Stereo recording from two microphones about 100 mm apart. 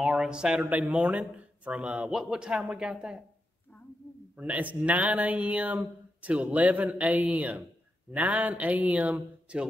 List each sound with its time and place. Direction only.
0.0 s speech: 5° right (ahead or behind)
3.7 s a sound: 20° left (ahead or behind)
4.4 s speech: 15° right (ahead or behind)